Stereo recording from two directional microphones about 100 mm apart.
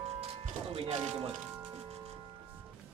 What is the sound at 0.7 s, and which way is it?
Music, 90° right.